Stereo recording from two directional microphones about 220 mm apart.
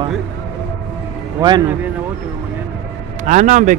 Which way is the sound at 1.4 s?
15° right (ahead or behind).